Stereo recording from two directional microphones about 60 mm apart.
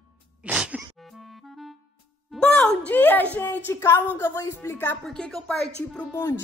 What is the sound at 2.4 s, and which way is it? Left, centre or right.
Speech, centre.